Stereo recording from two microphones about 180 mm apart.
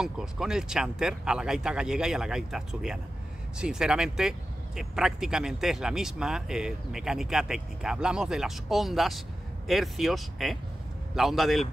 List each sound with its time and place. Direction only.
0.0 s speech: 5° right (ahead or behind)